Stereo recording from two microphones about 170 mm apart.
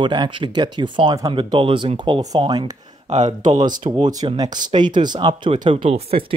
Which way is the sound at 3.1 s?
40° right (ahead or behind).